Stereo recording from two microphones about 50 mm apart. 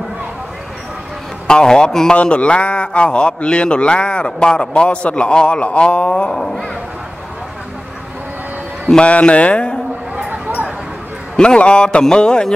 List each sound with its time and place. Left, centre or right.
1.5 s a man's voice: centre
2.1 s a man's voice: left
8.9 s a man's voice: left
11.3 s a man's voice: centre